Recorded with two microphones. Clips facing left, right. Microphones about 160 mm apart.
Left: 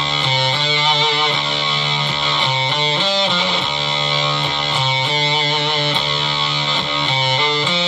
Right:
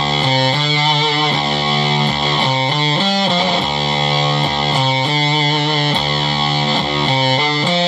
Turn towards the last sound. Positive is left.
turn(degrees=-40)  # may be behind; listen again after turning